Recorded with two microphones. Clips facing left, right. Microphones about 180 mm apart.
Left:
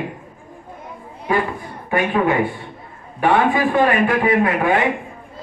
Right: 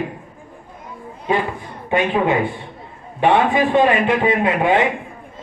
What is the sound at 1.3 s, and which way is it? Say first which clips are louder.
A man's voice: even; 20° right (ahead or behind).